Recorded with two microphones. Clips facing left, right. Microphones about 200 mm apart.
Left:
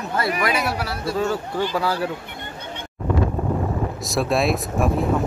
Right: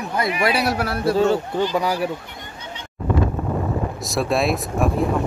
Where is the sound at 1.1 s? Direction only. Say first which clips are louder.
Right 5 dB; 30° right (ahead or behind).